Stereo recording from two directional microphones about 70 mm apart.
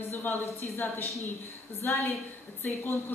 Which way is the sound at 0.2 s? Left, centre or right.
Left.